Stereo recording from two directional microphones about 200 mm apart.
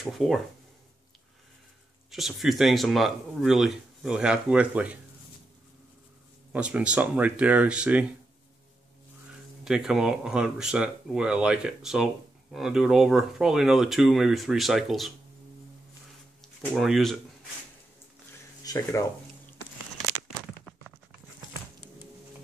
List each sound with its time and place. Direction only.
0.0 s speech: centre (ahead or behind)
2.0 s speech: centre (ahead or behind)
6.5 s speech: 5° right (ahead or behind)
9.7 s speech: 5° right (ahead or behind)
16.3 s speech: centre (ahead or behind)
18.6 s speech: 15° left (ahead or behind)